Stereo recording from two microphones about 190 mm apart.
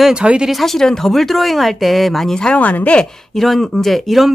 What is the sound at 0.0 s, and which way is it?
Speech, 5° right (ahead or behind).